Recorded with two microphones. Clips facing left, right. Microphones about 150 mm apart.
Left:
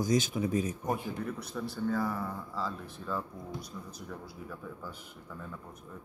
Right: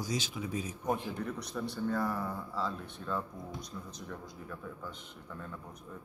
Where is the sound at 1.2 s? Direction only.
Centre (ahead or behind).